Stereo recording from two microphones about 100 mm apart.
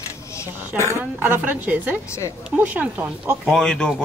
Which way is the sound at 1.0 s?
20° right (ahead or behind).